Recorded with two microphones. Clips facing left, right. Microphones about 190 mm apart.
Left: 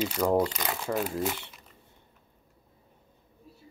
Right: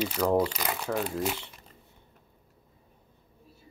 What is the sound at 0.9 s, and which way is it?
Speech, 5° left (ahead or behind).